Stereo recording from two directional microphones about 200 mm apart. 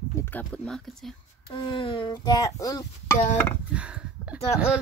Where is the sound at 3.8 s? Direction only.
5° right (ahead or behind).